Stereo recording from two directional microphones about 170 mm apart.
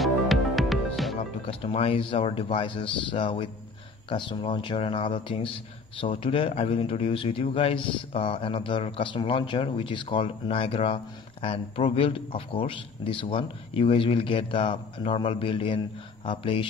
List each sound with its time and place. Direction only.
0.0 s music: centre (ahead or behind)
1.5 s a man's voice: 35° left (ahead or behind)